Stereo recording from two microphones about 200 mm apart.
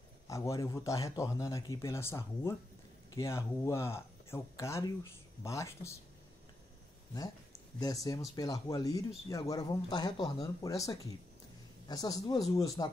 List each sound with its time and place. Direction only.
0.3 s speech: 15° left (ahead or behind)
7.8 s speech: 15° left (ahead or behind)